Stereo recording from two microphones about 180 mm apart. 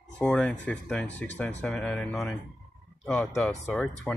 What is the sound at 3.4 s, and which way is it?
Speech, 10° left (ahead or behind).